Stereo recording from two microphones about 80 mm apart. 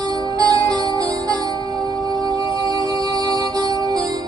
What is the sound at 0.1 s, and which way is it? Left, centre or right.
Music, right.